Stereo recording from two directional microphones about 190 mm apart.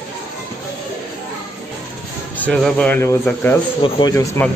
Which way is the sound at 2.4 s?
5° left (ahead or behind).